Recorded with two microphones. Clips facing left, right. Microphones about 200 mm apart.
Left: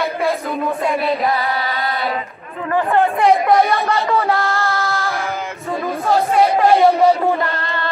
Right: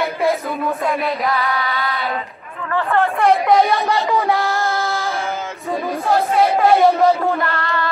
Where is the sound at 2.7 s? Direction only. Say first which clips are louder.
Left 2 dB; 15° left (ahead or behind).